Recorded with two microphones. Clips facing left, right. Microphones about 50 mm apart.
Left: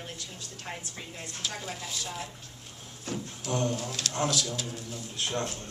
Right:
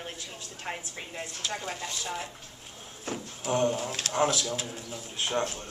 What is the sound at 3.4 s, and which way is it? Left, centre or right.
A woman's voice, right.